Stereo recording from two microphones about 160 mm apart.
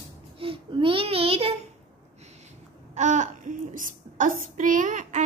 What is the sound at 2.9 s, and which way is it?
A child's voice, 45° right (ahead or behind).